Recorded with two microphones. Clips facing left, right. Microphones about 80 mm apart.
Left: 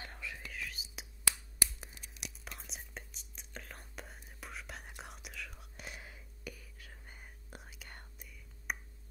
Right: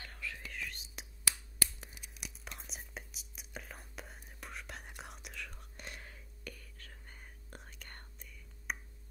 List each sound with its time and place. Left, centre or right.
0.0 s whispering: centre
0.4 s whispering: centre